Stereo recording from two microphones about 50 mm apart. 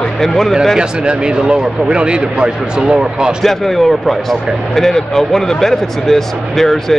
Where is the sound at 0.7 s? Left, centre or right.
Centre.